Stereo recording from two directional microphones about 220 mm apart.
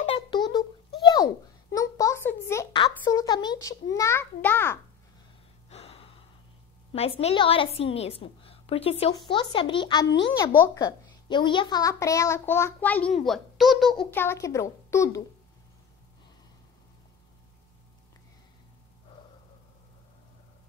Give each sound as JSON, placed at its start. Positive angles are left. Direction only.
{"t": 0.0, "sound": "a sound", "side_deg": 25}
{"t": 5.7, "sound": "gasp", "side_deg": 30}
{"t": 6.9, "sound": "a woman's voice", "side_deg": 25}
{"t": 14.1, "sound": "a child's voice", "side_deg": 10}